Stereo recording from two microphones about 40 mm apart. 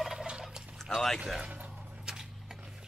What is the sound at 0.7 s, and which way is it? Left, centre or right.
Speech, centre.